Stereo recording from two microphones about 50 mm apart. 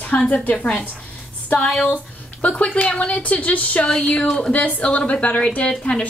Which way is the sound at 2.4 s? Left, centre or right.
Left.